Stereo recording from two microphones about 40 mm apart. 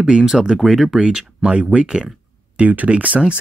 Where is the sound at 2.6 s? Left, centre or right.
Right.